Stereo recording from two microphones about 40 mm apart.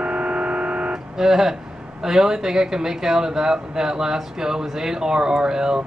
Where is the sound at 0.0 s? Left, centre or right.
Right.